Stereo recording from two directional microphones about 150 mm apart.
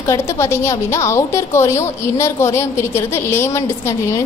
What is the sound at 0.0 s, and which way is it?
A woman's voice, 20° left (ahead or behind).